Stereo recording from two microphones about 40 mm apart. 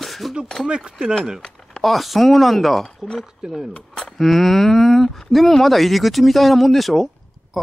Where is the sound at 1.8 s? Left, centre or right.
Centre.